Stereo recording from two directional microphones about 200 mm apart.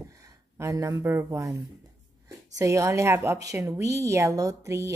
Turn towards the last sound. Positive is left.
turn(degrees=-15)  # may be behind; listen again after turning